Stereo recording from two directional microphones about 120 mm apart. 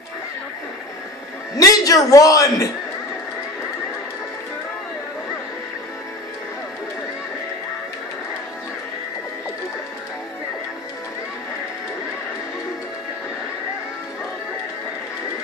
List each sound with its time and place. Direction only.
1.6 s a man's voice: 30° left (ahead or behind)